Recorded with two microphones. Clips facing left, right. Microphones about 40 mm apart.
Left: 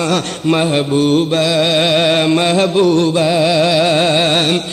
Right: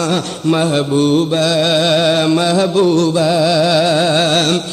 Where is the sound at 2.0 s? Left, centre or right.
Left.